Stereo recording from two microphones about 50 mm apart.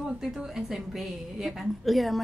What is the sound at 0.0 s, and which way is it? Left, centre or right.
A woman's voice, centre.